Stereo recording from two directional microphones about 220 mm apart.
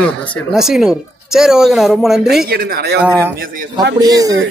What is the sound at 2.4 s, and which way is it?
Speech, 45° right (ahead or behind).